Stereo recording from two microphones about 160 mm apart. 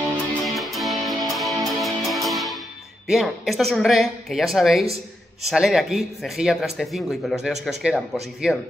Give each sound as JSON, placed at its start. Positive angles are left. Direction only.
{"t": 0.3, "sound": "music", "side_deg": 0}
{"t": 3.1, "sound": "speech", "side_deg": 0}
{"t": 4.8, "sound": "speech", "side_deg": -40}
{"t": 5.5, "sound": "speech", "side_deg": 0}